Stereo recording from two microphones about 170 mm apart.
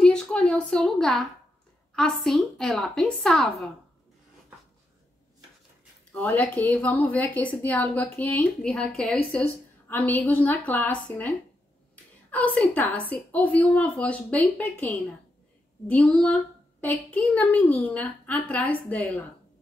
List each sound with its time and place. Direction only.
0.0 s a sound: 5° left (ahead or behind)
2.0 s a woman's voice: centre (ahead or behind)
6.1 s a woman's voice: 10° left (ahead or behind)